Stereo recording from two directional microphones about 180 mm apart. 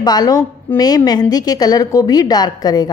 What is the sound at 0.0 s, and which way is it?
A woman's voice, 20° left (ahead or behind).